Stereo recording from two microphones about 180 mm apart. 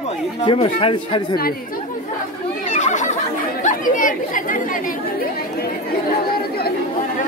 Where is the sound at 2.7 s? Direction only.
40° left (ahead or behind).